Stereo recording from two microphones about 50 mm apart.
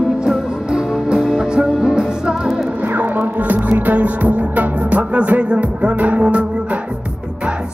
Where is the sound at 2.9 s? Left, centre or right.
Right.